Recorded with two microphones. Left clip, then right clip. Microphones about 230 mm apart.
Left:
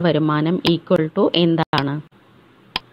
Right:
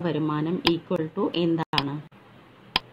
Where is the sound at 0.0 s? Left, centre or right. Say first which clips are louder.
Left 9 dB; left.